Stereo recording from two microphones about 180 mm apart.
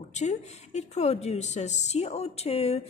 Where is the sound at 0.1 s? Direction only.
40° left (ahead or behind).